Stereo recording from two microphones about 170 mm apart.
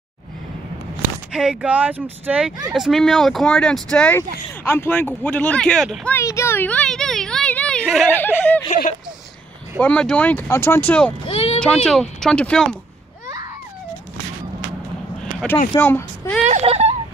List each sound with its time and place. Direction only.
1.3 s speech: 5° right (ahead or behind)
6.1 s speech: 15° left (ahead or behind); by 8.1 s centre (ahead or behind)
8.1 s speech: 10° left (ahead or behind)
9.8 s speech: 5° left (ahead or behind)
11.2 s a sound: 35° left (ahead or behind)
11.6 s speech: 5° left (ahead or behind)
15.7 s speech: 10° left (ahead or behind)
16.4 s speech: 40° right (ahead or behind)